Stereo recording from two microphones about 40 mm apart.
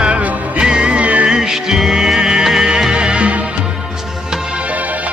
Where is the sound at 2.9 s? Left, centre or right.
Right.